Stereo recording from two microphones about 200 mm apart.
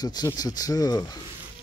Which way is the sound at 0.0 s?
20° left (ahead or behind).